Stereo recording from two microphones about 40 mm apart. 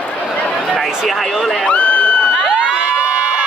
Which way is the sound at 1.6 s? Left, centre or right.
Left.